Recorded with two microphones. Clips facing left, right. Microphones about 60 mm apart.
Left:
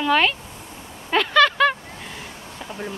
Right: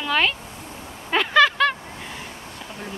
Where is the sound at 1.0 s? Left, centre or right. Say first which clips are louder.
Even; centre.